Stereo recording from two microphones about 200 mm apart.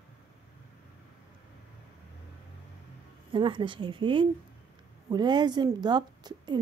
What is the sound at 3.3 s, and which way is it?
A woman's voice, 25° right (ahead or behind).